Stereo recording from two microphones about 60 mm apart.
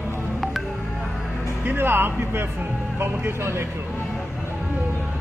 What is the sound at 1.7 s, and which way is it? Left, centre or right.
Speech, right.